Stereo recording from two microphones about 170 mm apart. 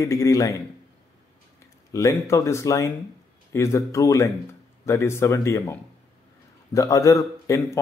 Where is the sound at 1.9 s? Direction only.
20° left (ahead or behind).